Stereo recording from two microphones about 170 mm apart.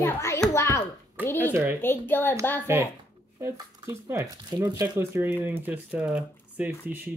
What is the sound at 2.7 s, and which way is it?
Speech, 15° right (ahead or behind).